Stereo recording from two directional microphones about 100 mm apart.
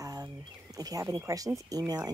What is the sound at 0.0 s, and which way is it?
Speech, 40° right (ahead or behind).